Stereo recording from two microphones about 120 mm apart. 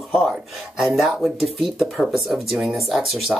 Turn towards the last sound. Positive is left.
turn(degrees=-5)  # may be behind; listen again after turning